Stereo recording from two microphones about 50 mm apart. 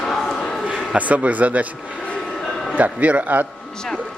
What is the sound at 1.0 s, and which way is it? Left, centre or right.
Speech, right.